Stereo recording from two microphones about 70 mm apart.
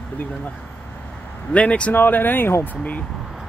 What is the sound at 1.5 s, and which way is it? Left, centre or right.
Speech, centre.